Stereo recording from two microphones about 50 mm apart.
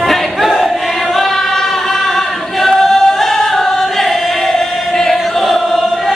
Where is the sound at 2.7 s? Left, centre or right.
Centre.